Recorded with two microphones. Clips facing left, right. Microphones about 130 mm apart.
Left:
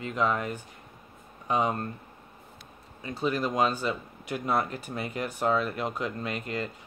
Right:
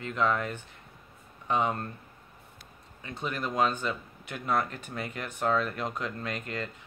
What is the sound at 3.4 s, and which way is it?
Speech, 15° left (ahead or behind).